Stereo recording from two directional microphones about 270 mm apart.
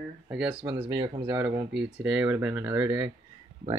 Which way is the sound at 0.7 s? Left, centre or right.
Centre.